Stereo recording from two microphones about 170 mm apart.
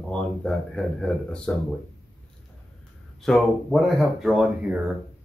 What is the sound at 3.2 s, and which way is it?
Speech, 5° left (ahead or behind).